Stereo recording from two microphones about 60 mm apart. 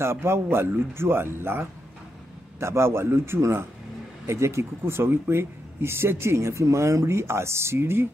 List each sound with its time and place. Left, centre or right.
0.0 s speech: right